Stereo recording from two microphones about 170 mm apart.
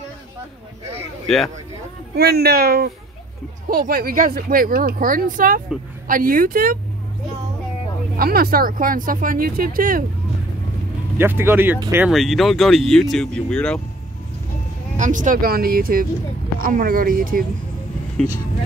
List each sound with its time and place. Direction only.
1.2 s speech: centre (ahead or behind)
2.1 s speech: 65° right (ahead or behind)
8.2 s speech: 60° right (ahead or behind)
11.1 s speech: 15° right (ahead or behind); by 13.7 s 5° left (ahead or behind)
15.0 s speech: 50° right (ahead or behind)